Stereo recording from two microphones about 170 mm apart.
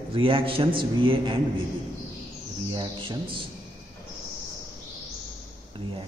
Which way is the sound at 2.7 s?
30° right (ahead or behind).